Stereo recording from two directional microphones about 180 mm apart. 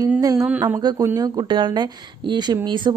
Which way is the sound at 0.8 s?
20° right (ahead or behind).